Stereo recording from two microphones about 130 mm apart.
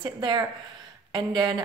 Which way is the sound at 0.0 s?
35° right (ahead or behind).